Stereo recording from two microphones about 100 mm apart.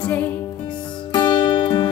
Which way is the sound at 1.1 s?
50° left (ahead or behind).